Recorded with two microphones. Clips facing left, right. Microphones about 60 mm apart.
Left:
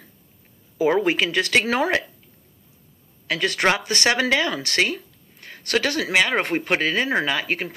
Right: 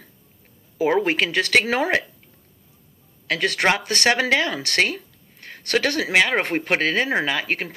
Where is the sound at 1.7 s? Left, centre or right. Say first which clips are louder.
Even; right.